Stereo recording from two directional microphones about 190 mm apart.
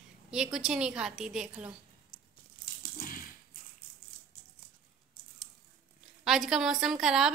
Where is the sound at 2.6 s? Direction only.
55° left (ahead or behind).